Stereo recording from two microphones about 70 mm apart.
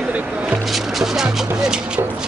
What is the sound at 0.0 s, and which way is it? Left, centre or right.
Speech, centre.